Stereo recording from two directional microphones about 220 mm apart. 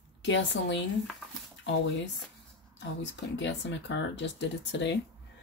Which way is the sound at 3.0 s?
55° left (ahead or behind).